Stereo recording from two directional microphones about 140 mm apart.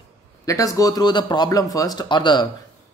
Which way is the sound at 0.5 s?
25° left (ahead or behind).